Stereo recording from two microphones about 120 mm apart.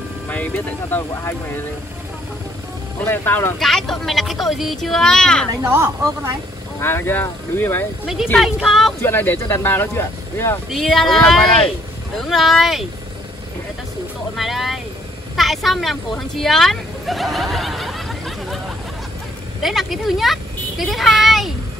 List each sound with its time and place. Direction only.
0.3 s speech: 10° left (ahead or behind)
3.0 s speech: 15° left (ahead or behind)
3.5 s speech: 5° left (ahead or behind)
5.5 s speech: 25° right (ahead or behind)
6.8 s speech: 20° left (ahead or behind)
8.4 s speech: centre (ahead or behind)
9.0 s speech: 15° left (ahead or behind)
10.7 s speech: 5° left (ahead or behind)
14.3 s speech: centre (ahead or behind)
19.6 s a child's voice: centre (ahead or behind)